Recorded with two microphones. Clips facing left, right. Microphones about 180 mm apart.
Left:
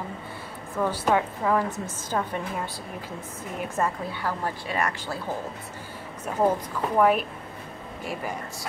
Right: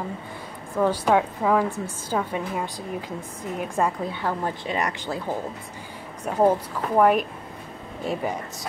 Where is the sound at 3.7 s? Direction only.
15° right (ahead or behind).